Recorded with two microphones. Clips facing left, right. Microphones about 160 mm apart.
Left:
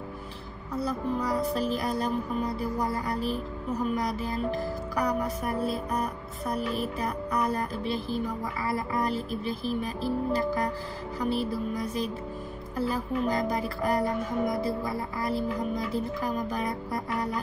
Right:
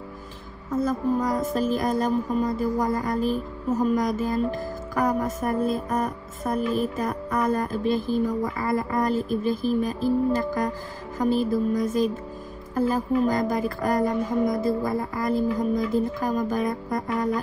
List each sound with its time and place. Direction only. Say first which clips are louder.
0.7 s music: right 6 dB; 45° right (ahead or behind)